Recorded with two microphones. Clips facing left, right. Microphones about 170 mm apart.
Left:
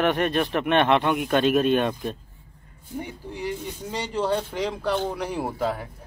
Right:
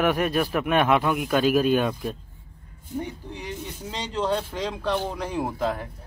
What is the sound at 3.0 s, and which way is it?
Speech, 10° left (ahead or behind).